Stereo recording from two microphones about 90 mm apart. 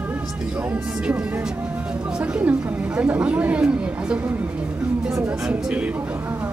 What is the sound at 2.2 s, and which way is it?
A woman's voice, 15° right (ahead or behind).